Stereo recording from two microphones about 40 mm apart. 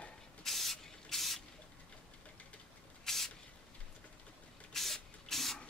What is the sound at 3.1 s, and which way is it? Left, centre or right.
Spray, centre.